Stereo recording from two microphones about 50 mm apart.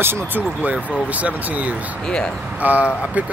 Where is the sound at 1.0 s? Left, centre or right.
Right.